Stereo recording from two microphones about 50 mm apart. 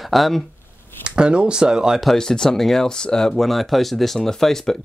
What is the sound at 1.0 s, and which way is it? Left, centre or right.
Speech, right.